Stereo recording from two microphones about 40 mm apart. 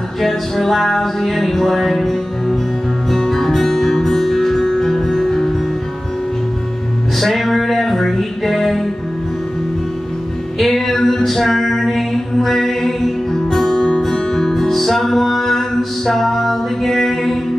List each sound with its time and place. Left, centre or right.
0.2 s music: centre
7.2 s music: centre
10.6 s music: centre